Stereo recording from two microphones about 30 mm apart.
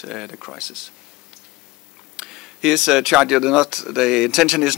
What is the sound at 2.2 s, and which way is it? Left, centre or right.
Speech, centre.